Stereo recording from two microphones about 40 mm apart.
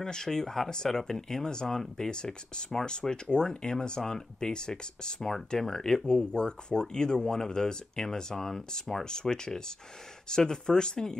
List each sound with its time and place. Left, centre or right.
0.0 s speech: centre